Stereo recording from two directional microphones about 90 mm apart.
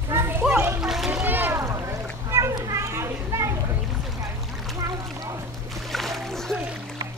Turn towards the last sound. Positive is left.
turn(degrees=5)  # may be behind; listen again after turning